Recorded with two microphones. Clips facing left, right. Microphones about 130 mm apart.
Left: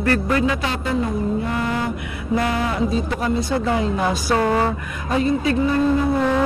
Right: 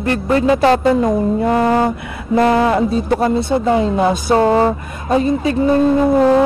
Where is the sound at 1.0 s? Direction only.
90° right.